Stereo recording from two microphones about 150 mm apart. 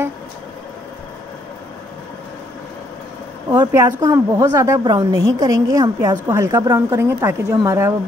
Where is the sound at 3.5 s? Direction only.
20° right (ahead or behind).